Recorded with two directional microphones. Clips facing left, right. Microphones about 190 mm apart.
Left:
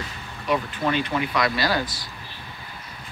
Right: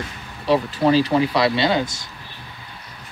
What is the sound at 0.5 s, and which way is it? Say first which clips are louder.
Speech: right 7 dB; 35° right (ahead or behind).